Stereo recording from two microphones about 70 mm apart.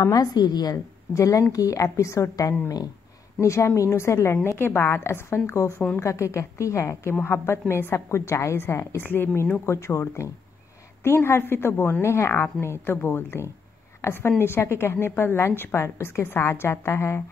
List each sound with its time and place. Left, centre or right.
0.0 s a woman's voice: left
1.1 s a woman's voice: left